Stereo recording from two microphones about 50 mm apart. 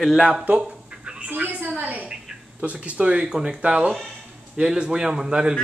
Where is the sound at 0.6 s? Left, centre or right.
Centre.